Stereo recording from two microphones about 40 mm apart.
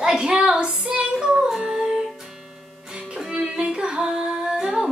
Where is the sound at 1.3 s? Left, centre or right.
Centre.